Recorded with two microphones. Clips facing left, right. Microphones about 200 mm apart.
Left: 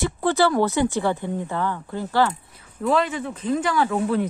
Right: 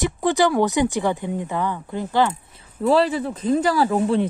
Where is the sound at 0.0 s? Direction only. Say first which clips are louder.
Right 1 dB; 15° right (ahead or behind).